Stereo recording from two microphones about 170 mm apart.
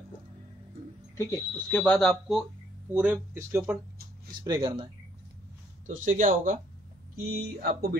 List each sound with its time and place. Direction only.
1.1 s speech: 15° left (ahead or behind)
1.8 s speech: 5° left (ahead or behind)
2.9 s speech: 10° right (ahead or behind)
5.9 s speech: 45° right (ahead or behind)
7.2 s speech: 65° right (ahead or behind)